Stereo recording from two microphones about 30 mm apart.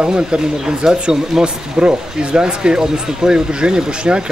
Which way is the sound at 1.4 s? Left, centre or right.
Right.